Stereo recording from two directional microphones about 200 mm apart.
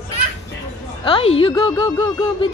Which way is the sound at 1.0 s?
25° left (ahead or behind).